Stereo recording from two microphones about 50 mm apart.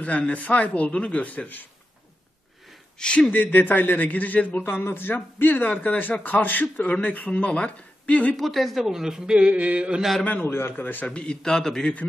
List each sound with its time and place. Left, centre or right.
0.0 s speech: left
3.0 s speech: centre
3.5 s speech: left
4.6 s speech: left
8.4 s a man's voice: centre
9.5 s mantra: right
10.4 s a man's voice: left
11.1 s a man's voice: centre